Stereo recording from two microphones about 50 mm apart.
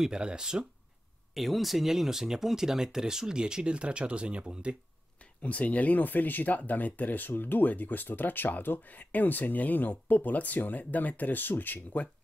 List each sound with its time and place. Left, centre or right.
0.0 s speech: centre
1.3 s speech: centre; by 4.7 s right
5.4 s speech: left